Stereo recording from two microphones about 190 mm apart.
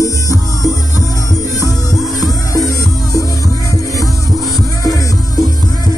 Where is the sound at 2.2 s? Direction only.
20° left (ahead or behind).